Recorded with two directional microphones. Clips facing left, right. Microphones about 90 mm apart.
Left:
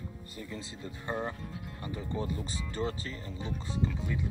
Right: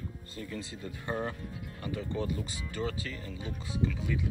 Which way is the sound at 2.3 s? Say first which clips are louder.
Even; 30° left (ahead or behind).